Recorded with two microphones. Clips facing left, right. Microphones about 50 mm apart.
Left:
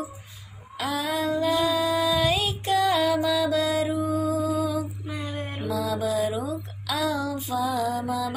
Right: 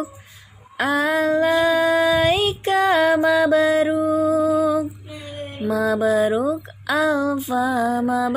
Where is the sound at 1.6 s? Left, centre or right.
Right.